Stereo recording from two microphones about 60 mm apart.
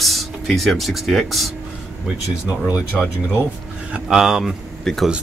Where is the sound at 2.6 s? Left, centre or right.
Centre.